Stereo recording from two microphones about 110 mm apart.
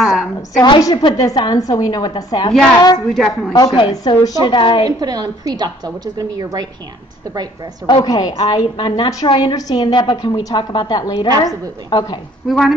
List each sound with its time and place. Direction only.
0.0 s a sound: centre (ahead or behind)
0.6 s a woman's voice: 35° left (ahead or behind)
3.1 s a woman's voice: centre (ahead or behind)
3.7 s a woman's voice: 45° left (ahead or behind)
4.8 s a woman's voice: 35° right (ahead or behind)
7.8 s a woman's voice: 40° left (ahead or behind)
12.4 s a woman's voice: centre (ahead or behind)